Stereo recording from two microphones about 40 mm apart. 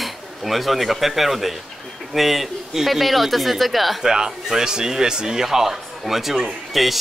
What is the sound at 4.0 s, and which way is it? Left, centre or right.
Speech, centre.